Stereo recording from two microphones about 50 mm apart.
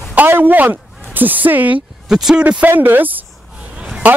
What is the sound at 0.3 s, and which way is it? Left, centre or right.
Speech, right.